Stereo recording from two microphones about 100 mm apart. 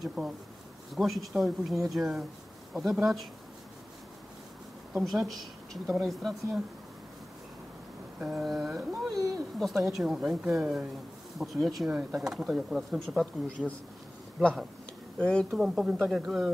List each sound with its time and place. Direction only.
0.0 s a sound: 10° right (ahead or behind)
0.9 s speech: centre (ahead or behind)
4.9 s speech: centre (ahead or behind)
8.2 s a sound: 5° right (ahead or behind)
9.1 s speech: 35° right (ahead or behind)
9.6 s speech: centre (ahead or behind)
13.0 s speech: 5° left (ahead or behind)
15.1 s speech: 10° left (ahead or behind)
15.5 s speech: 5° right (ahead or behind)